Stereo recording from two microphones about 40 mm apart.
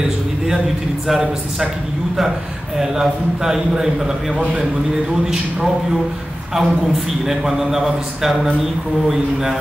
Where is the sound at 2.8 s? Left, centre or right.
Centre.